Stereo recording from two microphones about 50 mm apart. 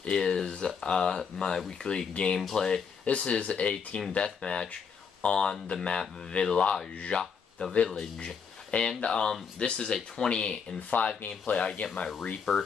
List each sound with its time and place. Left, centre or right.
0.0 s speech: centre
2.3 s speech: centre
3.1 s speech: left
10.9 s speech: left
11.6 s speech: left